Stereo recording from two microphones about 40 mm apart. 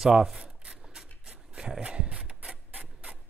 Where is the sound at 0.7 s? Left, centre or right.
Centre.